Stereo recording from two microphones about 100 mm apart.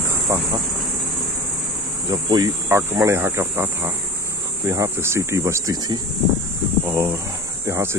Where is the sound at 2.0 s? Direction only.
40° right (ahead or behind).